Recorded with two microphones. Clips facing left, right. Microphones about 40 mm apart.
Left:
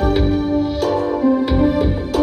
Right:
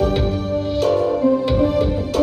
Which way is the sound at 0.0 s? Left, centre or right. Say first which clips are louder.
Left 3 dB; centre.